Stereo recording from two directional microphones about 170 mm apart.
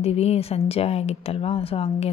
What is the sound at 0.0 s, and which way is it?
A woman's voice, 35° left (ahead or behind).